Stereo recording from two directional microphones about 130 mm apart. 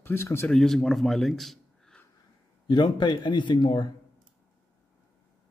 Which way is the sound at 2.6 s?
35° left (ahead or behind).